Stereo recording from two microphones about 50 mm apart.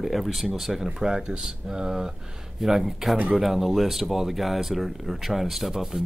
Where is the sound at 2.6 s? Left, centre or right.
Centre.